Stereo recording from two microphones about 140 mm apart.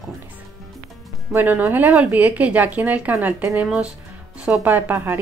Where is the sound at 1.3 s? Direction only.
15° right (ahead or behind).